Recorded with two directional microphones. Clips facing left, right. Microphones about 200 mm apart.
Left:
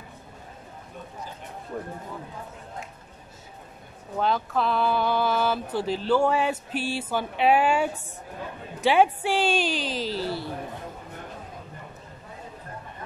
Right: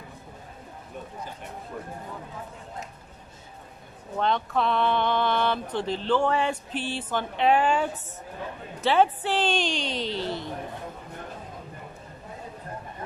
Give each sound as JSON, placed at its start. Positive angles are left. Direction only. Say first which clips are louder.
{"t": 4.2, "sound": "speech", "louder": "even", "side_deg": 5}